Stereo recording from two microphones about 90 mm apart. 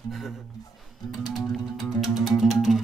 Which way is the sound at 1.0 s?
45° left (ahead or behind).